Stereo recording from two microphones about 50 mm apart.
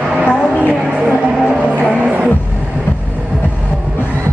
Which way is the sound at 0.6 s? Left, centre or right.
Right.